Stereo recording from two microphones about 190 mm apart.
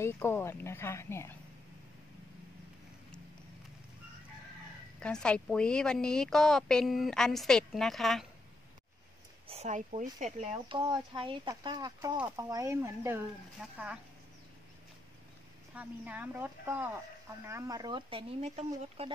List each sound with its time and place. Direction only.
0.0 s speech: 15° left (ahead or behind)
5.0 s a woman's voice: 5° left (ahead or behind)
9.5 s speech: 35° right (ahead or behind); by 13.9 s 5° right (ahead or behind)
15.7 s speech: 10° right (ahead or behind); by 19.1 s 30° right (ahead or behind)